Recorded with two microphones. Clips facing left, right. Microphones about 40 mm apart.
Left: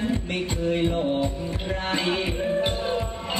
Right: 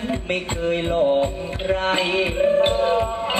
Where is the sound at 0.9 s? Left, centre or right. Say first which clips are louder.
Right 6 dB; right.